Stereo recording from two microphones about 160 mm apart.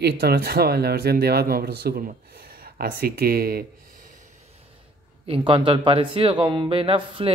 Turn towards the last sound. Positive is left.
turn(degrees=-35)  # may be behind; listen again after turning